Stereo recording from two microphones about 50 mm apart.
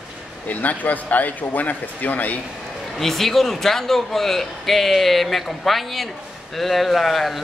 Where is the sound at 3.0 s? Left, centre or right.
Centre.